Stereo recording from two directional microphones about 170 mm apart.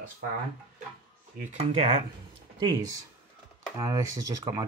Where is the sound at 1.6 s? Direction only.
35° right (ahead or behind).